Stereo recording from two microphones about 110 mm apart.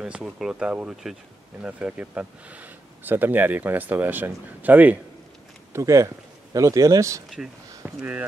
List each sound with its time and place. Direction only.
0.0 s speech: 5° right (ahead or behind)
5.7 s speech: 30° right (ahead or behind)
7.8 s speech: 15° right (ahead or behind)